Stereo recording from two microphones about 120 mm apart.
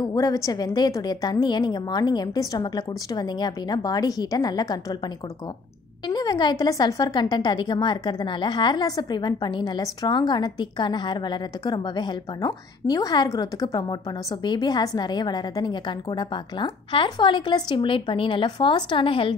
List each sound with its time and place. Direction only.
0.0 s a woman's voice: 30° left (ahead or behind); by 19.3 s 45° left (ahead or behind)